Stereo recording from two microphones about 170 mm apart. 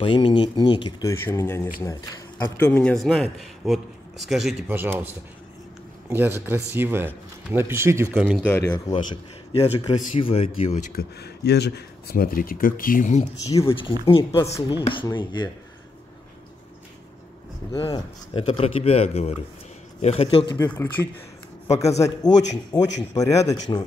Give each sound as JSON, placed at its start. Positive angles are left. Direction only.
{"t": 0.0, "sound": "speech", "side_deg": 30}
{"t": 1.1, "sound": "a man's voice", "side_deg": 15}
{"t": 4.7, "sound": "speech", "side_deg": -15}
{"t": 8.4, "sound": "speech", "side_deg": 10}
{"t": 8.7, "sound": "speech", "side_deg": 25}
{"t": 11.0, "sound": "speech", "side_deg": 70}
{"t": 13.7, "sound": "speech", "side_deg": 30}
{"t": 17.7, "sound": "speech", "side_deg": 30}
{"t": 20.5, "sound": "speech", "side_deg": 15}
{"t": 22.7, "sound": "speech", "side_deg": 25}